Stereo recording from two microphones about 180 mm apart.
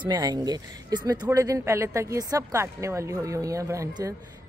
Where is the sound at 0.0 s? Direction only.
20° right (ahead or behind).